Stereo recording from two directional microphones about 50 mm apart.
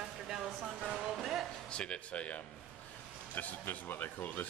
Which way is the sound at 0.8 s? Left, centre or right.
Centre.